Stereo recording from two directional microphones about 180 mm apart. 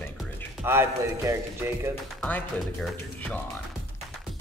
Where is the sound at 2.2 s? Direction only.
5° left (ahead or behind).